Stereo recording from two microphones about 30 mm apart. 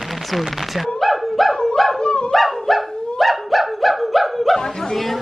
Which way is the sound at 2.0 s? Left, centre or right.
Left.